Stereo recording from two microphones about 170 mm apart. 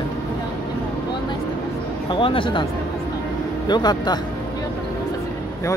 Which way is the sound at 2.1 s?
30° left (ahead or behind).